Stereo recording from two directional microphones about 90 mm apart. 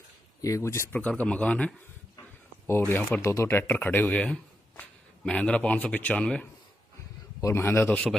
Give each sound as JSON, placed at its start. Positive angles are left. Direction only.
{"t": 0.4, "sound": "speech", "side_deg": 35}
{"t": 0.9, "sound": "speech", "side_deg": 15}
{"t": 3.2, "sound": "speech", "side_deg": 35}
{"t": 7.4, "sound": "speech", "side_deg": 30}
{"t": 7.9, "sound": "speech", "side_deg": 5}